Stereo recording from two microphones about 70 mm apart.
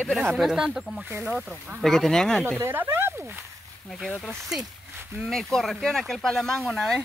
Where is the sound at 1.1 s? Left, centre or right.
Right.